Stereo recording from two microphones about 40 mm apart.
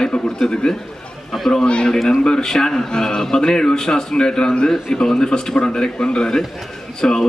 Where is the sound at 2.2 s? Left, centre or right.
Centre.